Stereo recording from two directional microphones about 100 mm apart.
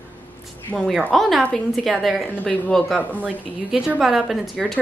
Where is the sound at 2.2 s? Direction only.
15° left (ahead or behind).